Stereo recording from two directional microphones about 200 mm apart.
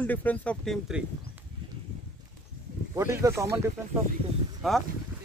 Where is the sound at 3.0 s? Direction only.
15° right (ahead or behind).